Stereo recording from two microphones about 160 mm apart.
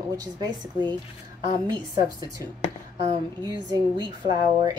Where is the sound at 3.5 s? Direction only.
30° right (ahead or behind).